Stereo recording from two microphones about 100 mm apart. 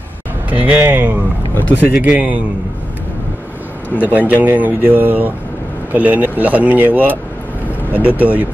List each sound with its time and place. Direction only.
0.5 s speech: 15° right (ahead or behind)
4.0 s speech: 15° right (ahead or behind)